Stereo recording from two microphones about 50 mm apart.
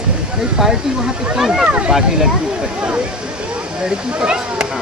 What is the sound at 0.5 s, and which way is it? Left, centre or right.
Speech, centre.